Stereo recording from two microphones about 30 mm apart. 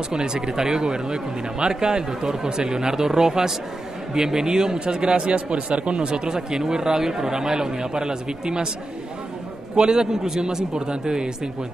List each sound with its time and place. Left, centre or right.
0.1 s speech: right
4.7 s speech: right
9.8 s speech: right